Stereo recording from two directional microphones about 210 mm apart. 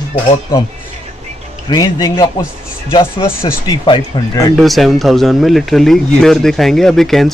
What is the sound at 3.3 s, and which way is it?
A man's voice, 10° left (ahead or behind).